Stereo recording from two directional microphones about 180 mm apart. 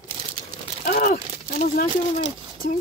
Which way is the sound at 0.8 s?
50° left (ahead or behind).